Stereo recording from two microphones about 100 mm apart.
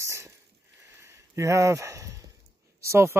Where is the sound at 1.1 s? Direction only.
30° right (ahead or behind).